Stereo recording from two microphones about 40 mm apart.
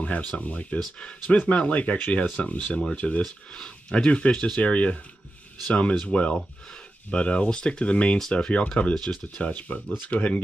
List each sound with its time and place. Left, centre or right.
0.4 s speech: left
1.4 s speech: left
2.1 s speech: left
3.5 s speech: left
4.6 s speech: left
8.9 s speech: centre
9.4 s speech: left